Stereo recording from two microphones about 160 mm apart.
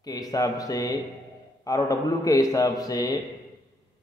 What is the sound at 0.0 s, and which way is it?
A man's voice, 25° left (ahead or behind).